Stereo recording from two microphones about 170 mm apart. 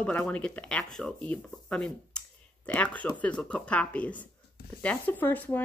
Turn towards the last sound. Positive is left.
turn(degrees=10)  # may be behind; listen again after turning